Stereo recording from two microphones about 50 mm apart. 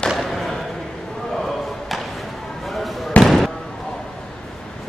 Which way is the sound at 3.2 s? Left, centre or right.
Centre.